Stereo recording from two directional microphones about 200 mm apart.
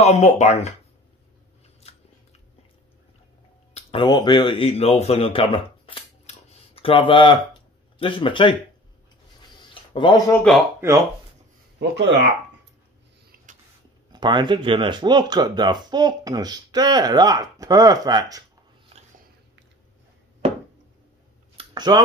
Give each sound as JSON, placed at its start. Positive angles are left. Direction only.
{"t": 0.0, "sound": "speech", "side_deg": 35}
{"t": 1.8, "sound": "biting", "side_deg": 30}
{"t": 3.7, "sound": "speech", "side_deg": 25}
{"t": 9.6, "sound": "a sound", "side_deg": 25}
{"t": 10.5, "sound": "speech", "side_deg": 0}
{"t": 11.8, "sound": "speech", "side_deg": -60}
{"t": 13.5, "sound": "a sound", "side_deg": -40}
{"t": 14.1, "sound": "speech", "side_deg": -25}
{"t": 21.5, "sound": "a sound", "side_deg": -20}